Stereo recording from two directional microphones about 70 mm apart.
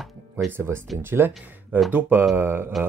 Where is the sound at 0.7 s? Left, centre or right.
Right.